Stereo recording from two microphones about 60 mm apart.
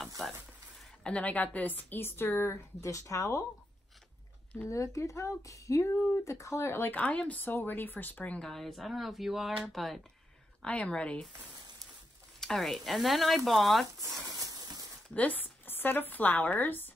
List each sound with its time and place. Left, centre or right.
1.0 s a woman's voice: left
4.6 s speech: left
6.9 s speech: left
7.4 s a woman's voice: left
8.4 s speech: centre
10.6 s speech: centre
12.4 s speech: centre
14.0 s a sound: right
15.1 s speech: left